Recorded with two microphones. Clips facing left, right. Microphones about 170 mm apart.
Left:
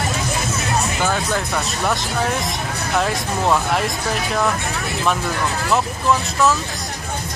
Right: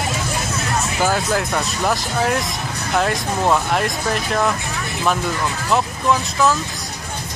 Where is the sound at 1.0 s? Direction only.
5° right (ahead or behind).